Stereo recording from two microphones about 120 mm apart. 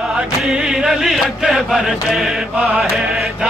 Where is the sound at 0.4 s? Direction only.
5° right (ahead or behind).